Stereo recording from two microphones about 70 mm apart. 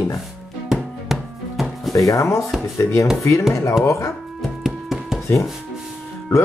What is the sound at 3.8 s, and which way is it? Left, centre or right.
Speech, left.